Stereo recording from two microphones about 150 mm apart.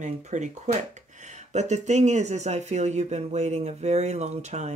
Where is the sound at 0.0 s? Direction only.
50° right (ahead or behind).